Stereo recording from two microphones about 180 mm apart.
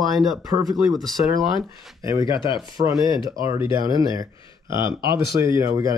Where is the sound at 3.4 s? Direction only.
15° right (ahead or behind).